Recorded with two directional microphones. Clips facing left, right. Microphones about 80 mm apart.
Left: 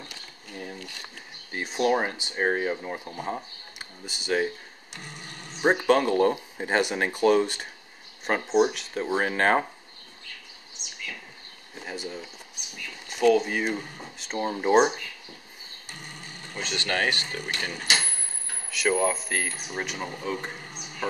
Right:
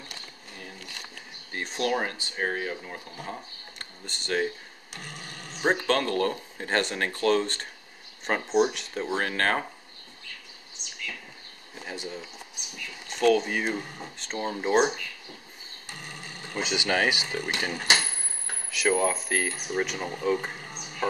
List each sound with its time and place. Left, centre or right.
1.5 s speech: centre
1.9 s speech: centre
3.7 s a sound: centre
5.6 s speech: centre
11.8 s speech: centre
16.5 s speech: centre